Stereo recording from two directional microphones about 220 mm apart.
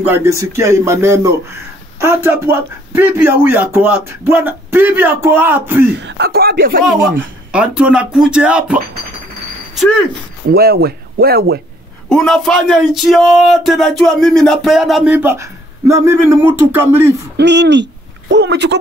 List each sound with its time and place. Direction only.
0.0 s speech: 10° right (ahead or behind)
5.9 s speech: 50° right (ahead or behind)
7.5 s speech: 5° right (ahead or behind)
10.5 s speech: 45° right (ahead or behind)
12.1 s speech: centre (ahead or behind)
17.4 s speech: 50° right (ahead or behind)